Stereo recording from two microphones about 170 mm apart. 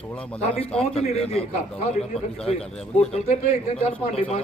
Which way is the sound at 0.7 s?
35° left (ahead or behind).